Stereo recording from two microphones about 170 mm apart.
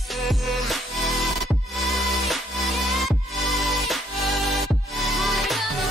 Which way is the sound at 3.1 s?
Centre (ahead or behind).